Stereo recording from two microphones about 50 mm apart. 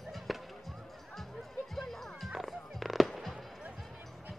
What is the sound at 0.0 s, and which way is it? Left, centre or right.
Basketball bounce, centre.